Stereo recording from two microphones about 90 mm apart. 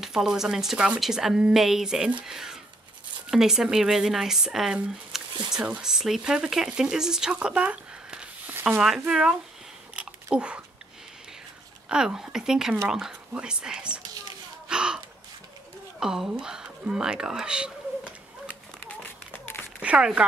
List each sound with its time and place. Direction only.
0.0 s speech: 5° right (ahead or behind)
9.9 s a sound: 10° right (ahead or behind)
11.9 s speech: 5° right (ahead or behind)
14.7 s gasp: 10° right (ahead or behind)
16.0 s speech: 5° right (ahead or behind)
18.5 s run: 20° left (ahead or behind)
19.8 s speech: 10° right (ahead or behind)